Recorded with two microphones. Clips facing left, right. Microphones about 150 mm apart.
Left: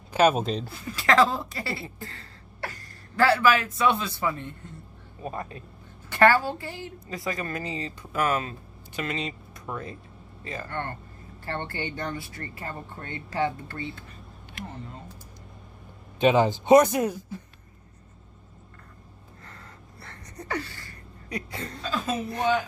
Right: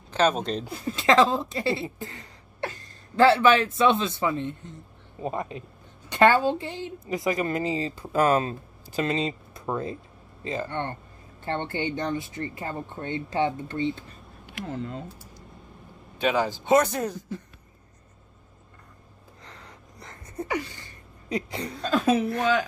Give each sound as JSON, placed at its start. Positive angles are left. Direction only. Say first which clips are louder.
{"t": 0.1, "sound": "speech", "louder": "left 2 dB", "side_deg": 10}
{"t": 0.8, "sound": "a woman's voice", "louder": "right 2 dB", "side_deg": -20}
{"t": 14.7, "sound": "speech", "louder": "right 8 dB", "side_deg": -90}
{"t": 16.2, "sound": "speech", "louder": "left 4 dB", "side_deg": 20}
{"t": 19.4, "sound": "a sound", "louder": "right 1 dB", "side_deg": -20}
{"t": 22.0, "sound": "a woman's voice", "louder": "right 3 dB", "side_deg": -85}